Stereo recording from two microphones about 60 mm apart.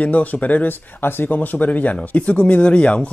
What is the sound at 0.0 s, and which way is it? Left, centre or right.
Speech, left.